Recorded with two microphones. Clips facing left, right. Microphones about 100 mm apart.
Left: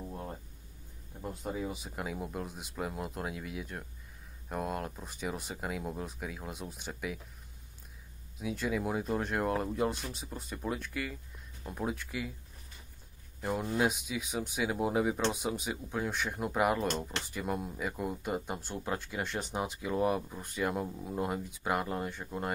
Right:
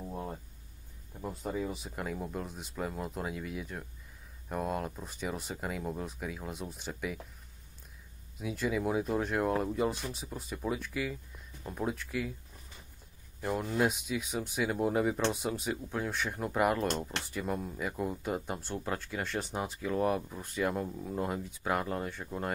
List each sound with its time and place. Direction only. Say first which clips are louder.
0.1 s a sound: right 2 dB; 5° right (ahead or behind)
1.2 s speech: right 1 dB; centre (ahead or behind)
8.4 s speech: right 1 dB; centre (ahead or behind)
13.4 s speech: right 1 dB; 5° left (ahead or behind)